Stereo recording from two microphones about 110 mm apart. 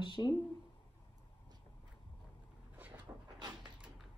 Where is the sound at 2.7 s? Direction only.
15° right (ahead or behind).